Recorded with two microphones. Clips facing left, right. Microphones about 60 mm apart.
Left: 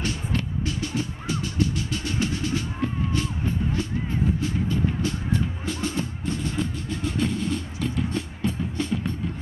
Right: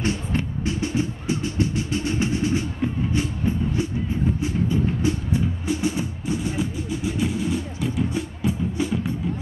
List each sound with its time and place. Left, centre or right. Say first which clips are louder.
0.0 s music: right 3 dB; right; by 9.1 s centre